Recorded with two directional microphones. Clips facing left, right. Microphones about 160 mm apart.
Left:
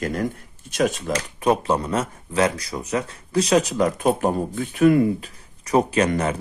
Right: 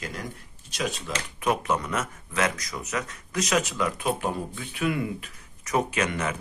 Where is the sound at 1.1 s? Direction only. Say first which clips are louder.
Left 6 dB; 35° left (ahead or behind).